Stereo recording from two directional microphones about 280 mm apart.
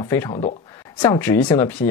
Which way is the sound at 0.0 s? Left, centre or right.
Centre.